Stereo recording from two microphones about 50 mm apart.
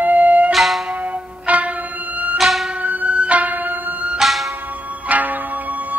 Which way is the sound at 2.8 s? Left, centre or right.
Right.